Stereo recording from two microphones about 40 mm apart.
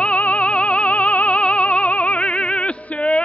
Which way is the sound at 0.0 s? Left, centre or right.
Left.